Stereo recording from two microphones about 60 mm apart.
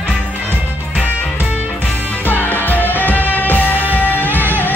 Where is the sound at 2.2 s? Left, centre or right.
Left.